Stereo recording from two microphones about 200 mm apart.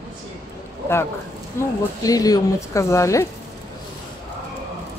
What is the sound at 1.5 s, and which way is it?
Speech, 15° left (ahead or behind).